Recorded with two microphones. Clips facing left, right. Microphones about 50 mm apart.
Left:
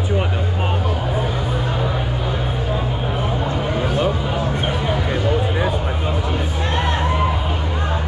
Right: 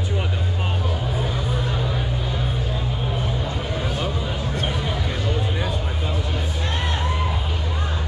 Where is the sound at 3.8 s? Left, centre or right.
Left.